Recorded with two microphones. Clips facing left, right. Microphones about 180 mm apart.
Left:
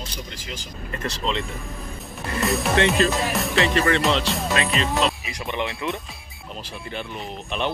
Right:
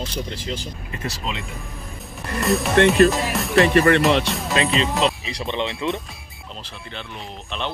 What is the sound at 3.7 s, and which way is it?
Music, 55° right (ahead or behind).